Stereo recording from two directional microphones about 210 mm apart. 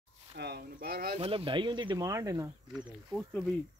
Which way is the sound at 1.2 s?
25° right (ahead or behind).